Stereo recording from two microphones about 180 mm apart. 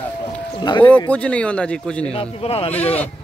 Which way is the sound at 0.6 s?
25° left (ahead or behind).